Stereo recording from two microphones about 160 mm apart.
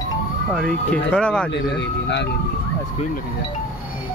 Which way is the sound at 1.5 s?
90° left.